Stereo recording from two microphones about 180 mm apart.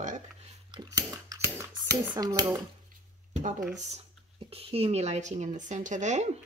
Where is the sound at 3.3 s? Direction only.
45° right (ahead or behind).